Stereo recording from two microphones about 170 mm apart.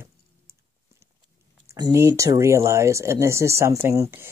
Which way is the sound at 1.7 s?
20° right (ahead or behind).